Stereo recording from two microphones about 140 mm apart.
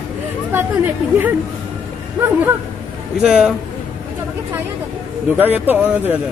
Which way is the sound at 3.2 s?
5° right (ahead or behind).